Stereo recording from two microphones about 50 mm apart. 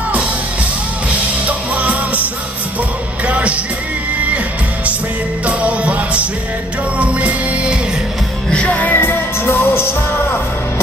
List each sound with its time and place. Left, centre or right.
1.4 s music: right
3.3 s music: right
5.4 s music: right
8.5 s music: left
8.7 s music: left
9.1 s music: left